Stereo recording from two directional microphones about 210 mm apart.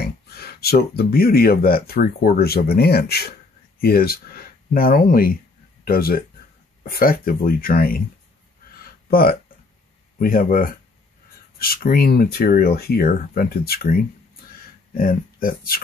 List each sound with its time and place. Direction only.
0.0 s speech: 45° left (ahead or behind)
9.1 s speech: 45° left (ahead or behind)